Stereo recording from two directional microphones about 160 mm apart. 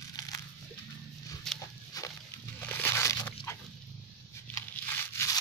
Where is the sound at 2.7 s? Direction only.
15° left (ahead or behind).